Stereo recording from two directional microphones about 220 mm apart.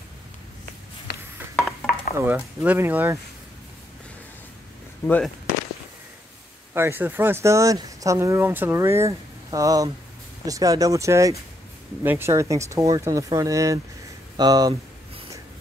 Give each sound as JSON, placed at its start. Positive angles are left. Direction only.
{"t": 1.1, "sound": "telephone dialing", "side_deg": 50}
{"t": 2.1, "sound": "speech", "side_deg": -5}
{"t": 5.0, "sound": "speech", "side_deg": 5}
{"t": 6.7, "sound": "speech", "side_deg": -10}
{"t": 14.3, "sound": "a sound", "side_deg": -20}